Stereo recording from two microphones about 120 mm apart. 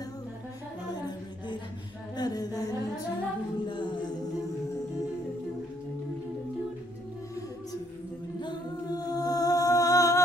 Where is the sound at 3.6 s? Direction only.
40° left (ahead or behind).